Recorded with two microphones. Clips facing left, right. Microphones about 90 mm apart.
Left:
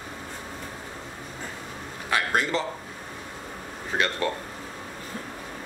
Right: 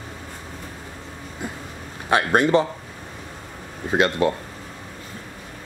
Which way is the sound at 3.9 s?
20° right (ahead or behind).